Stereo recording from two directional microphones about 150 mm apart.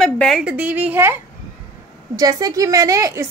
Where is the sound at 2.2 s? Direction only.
25° right (ahead or behind).